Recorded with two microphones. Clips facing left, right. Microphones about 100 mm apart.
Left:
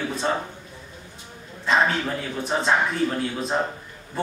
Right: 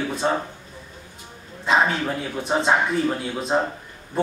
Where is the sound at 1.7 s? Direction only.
5° right (ahead or behind).